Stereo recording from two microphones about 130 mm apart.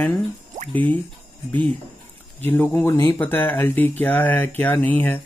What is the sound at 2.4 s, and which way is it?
Speech, 15° left (ahead or behind).